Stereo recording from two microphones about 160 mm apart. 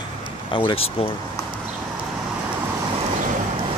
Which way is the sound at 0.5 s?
30° left (ahead or behind).